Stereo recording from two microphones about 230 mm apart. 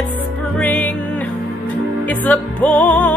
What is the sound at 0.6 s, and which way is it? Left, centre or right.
Music, centre.